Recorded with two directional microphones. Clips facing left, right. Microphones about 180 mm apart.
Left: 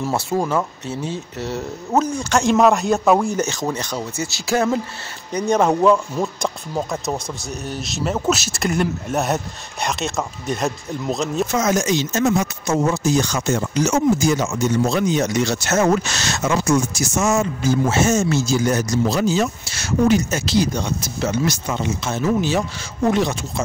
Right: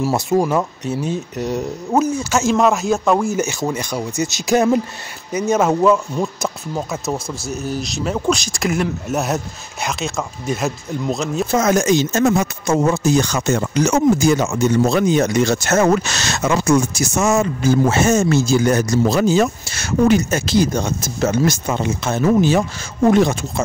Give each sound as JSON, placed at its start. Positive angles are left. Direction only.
{"t": 0.0, "sound": "speech", "side_deg": -15}
{"t": 5.3, "sound": "speech", "side_deg": -5}
{"t": 11.5, "sound": "speech", "side_deg": -55}